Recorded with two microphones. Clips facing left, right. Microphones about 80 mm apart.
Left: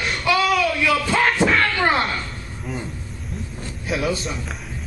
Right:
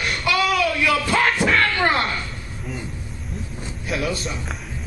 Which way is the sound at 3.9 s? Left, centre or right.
Centre.